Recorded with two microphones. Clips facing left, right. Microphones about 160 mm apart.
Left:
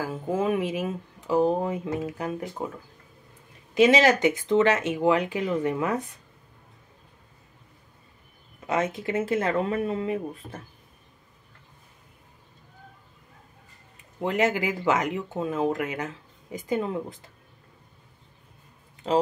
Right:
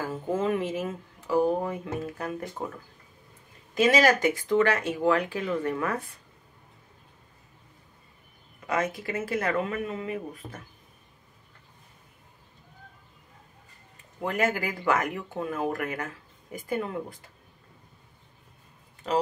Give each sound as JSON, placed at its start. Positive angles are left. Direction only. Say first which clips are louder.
{"t": 0.0, "sound": "speech", "louder": "left 1 dB", "side_deg": 10}
{"t": 3.7, "sound": "speech", "louder": "left 3 dB", "side_deg": 20}
{"t": 8.6, "sound": "speech", "louder": "left 2 dB", "side_deg": 25}
{"t": 14.2, "sound": "speech", "louder": "left 3 dB", "side_deg": 20}